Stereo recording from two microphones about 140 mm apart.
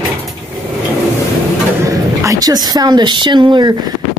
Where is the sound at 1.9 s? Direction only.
25° right (ahead or behind).